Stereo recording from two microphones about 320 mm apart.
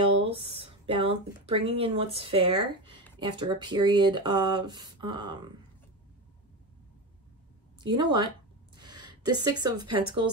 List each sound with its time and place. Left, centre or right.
0.0 s speech: centre
7.8 s speech: centre
8.7 s a sound: centre
9.6 s speech: centre